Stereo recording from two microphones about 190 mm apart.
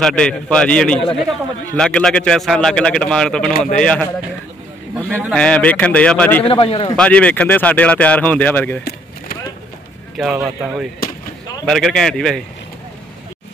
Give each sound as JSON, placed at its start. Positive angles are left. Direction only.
{"t": 0.0, "sound": "a man's voice", "side_deg": 5}
{"t": 5.2, "sound": "a man's voice", "side_deg": 5}
{"t": 6.4, "sound": "a man's voice", "side_deg": 30}
{"t": 7.0, "sound": "speech", "side_deg": 5}
{"t": 10.1, "sound": "a man's voice", "side_deg": 0}